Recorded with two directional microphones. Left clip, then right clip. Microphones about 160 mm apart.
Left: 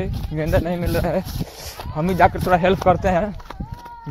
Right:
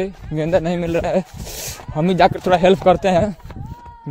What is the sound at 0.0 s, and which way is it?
Speech, 75° right (ahead or behind).